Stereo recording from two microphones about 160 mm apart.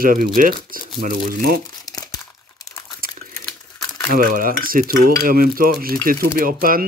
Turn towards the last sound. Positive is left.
turn(degrees=-65)  # may be behind; listen again after turning